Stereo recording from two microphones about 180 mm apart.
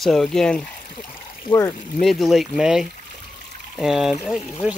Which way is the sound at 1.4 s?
15° left (ahead or behind).